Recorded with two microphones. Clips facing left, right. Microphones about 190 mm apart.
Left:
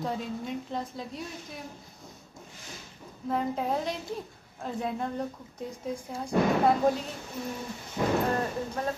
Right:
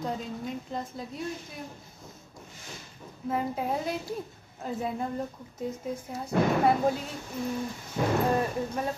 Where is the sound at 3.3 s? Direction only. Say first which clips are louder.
Left 1 dB; 5° right (ahead or behind).